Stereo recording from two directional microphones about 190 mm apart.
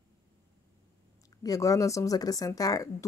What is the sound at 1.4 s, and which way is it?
Speech, 20° left (ahead or behind).